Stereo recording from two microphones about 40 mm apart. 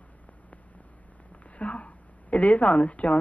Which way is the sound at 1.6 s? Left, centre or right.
Left.